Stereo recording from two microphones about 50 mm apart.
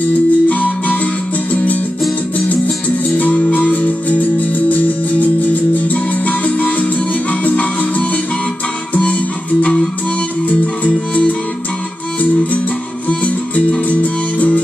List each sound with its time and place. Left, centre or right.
0.0 s music: left
8.9 s music: left
13.2 s music: left